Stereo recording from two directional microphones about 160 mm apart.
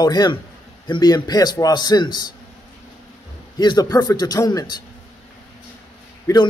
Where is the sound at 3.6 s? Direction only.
25° left (ahead or behind).